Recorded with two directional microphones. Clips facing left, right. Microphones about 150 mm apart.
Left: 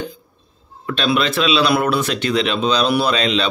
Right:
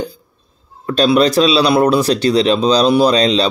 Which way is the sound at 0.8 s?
40° right (ahead or behind).